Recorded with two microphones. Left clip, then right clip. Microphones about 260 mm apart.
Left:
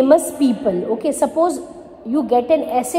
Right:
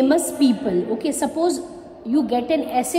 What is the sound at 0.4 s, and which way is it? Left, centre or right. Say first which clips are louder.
Speech: left 2 dB; left.